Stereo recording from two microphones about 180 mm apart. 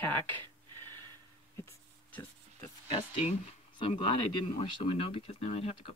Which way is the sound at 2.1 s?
10° left (ahead or behind).